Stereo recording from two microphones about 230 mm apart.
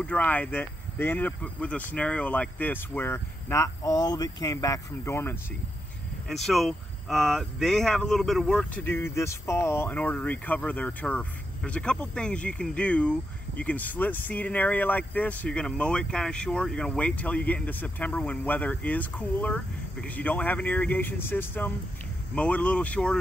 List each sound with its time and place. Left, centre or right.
0.0 s speech: centre